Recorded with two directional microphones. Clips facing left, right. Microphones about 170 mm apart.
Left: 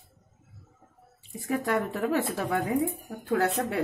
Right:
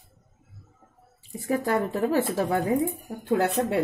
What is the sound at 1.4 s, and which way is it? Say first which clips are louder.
Speech: right 3 dB; 35° right (ahead or behind).